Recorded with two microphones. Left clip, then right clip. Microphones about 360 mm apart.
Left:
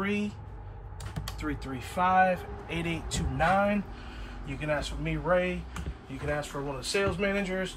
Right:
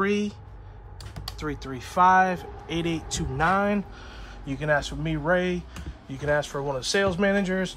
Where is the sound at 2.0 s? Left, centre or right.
Centre.